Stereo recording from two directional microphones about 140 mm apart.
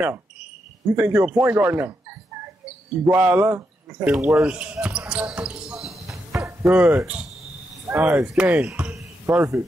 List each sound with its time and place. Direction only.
0.9 s speech: 10° right (ahead or behind)
4.4 s basketball bounce: 10° right (ahead or behind)
6.3 s a sound: 20° right (ahead or behind)
7.0 s speech: 10° right (ahead or behind)
9.3 s speech: 20° right (ahead or behind)